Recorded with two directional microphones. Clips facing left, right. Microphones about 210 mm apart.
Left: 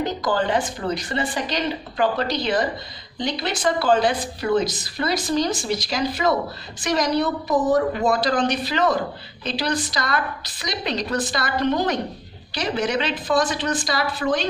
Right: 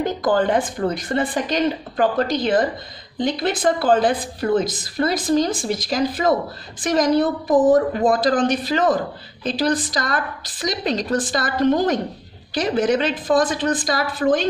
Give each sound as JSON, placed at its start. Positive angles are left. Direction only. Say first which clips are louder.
{"t": 0.0, "sound": "a woman's voice", "louder": "right 4 dB", "side_deg": -50}